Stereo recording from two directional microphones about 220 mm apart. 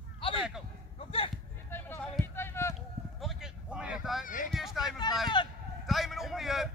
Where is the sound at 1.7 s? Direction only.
10° left (ahead or behind).